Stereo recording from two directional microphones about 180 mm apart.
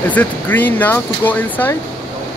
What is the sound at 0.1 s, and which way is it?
Speech, 10° left (ahead or behind).